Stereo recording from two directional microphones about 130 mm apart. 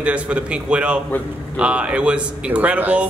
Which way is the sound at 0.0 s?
10° right (ahead or behind).